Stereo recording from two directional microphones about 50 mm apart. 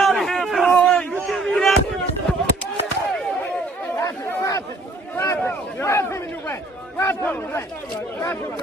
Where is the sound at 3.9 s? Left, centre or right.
Left.